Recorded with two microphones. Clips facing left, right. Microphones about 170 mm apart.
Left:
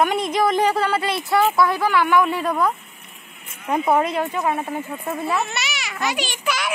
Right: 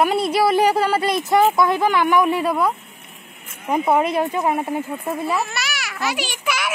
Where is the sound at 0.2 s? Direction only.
10° right (ahead or behind).